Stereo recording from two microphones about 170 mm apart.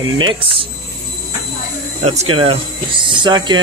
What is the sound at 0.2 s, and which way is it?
Speech, 30° right (ahead or behind).